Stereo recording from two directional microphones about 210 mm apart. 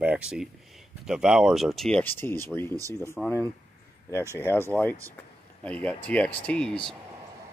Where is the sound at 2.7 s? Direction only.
15° right (ahead or behind).